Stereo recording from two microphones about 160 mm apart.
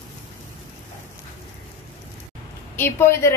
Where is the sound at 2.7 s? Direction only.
15° left (ahead or behind).